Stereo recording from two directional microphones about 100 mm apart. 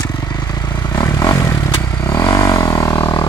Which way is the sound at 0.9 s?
30° left (ahead or behind).